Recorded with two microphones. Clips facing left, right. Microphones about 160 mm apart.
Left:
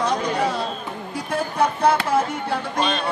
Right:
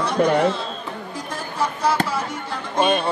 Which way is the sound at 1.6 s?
55° left (ahead or behind).